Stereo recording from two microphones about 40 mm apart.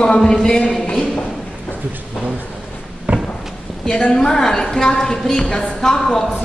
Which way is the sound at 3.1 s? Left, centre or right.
Right.